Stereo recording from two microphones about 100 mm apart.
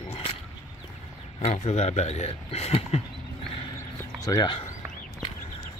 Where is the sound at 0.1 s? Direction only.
75° left (ahead or behind).